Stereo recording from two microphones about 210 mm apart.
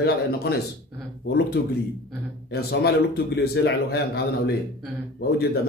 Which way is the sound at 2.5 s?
50° left (ahead or behind).